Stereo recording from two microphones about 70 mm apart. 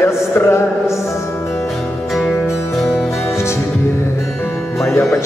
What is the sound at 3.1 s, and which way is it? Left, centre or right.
Music, left.